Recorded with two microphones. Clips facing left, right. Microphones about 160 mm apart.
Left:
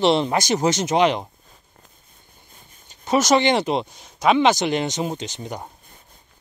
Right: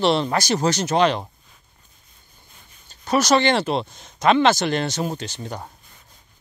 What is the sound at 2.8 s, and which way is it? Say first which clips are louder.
Speech: left 1 dB; 20° left (ahead or behind).